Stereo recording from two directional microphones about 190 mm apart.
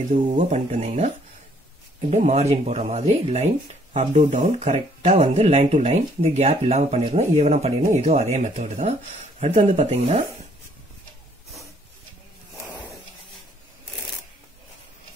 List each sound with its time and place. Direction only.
0.4 s speech: 35° right (ahead or behind)